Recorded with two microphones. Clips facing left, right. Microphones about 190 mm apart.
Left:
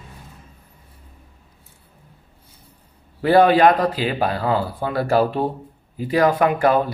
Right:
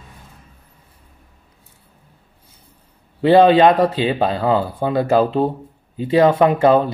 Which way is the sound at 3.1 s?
20° right (ahead or behind).